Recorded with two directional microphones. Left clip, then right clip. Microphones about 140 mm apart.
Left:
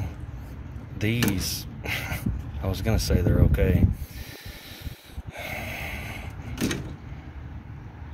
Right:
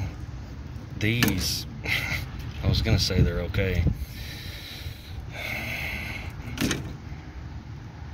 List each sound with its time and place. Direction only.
0.9 s speech: 15° left (ahead or behind)
5.3 s snort: 20° left (ahead or behind)